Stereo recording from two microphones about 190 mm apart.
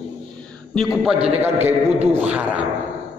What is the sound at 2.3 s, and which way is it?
Speech, 5° right (ahead or behind).